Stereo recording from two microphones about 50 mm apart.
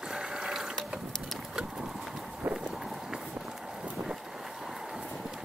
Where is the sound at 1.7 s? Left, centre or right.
Centre.